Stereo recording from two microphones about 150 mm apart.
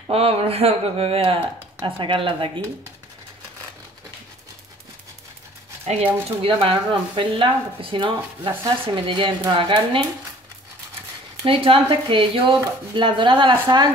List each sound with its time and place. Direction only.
0.1 s speech: 40° right (ahead or behind)
5.9 s speech: 45° right (ahead or behind)
6.2 s speech: 35° right (ahead or behind)
11.4 s speech: 35° right (ahead or behind)